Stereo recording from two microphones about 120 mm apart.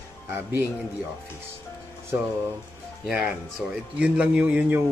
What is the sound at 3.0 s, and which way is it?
Speech, 5° right (ahead or behind).